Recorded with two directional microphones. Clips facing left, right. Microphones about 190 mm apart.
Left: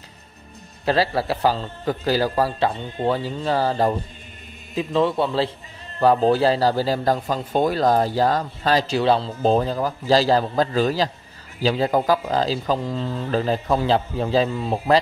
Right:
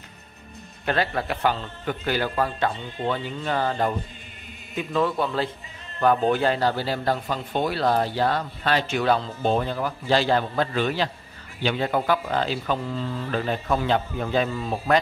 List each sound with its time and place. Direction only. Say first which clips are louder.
0.8 s a man's voice: left 4 dB; 35° left (ahead or behind)